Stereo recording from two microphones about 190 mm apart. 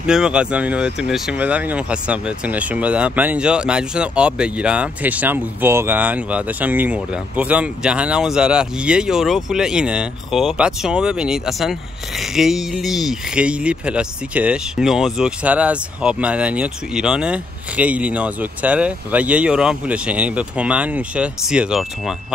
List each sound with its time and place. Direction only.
0.0 s speech: 5° right (ahead or behind)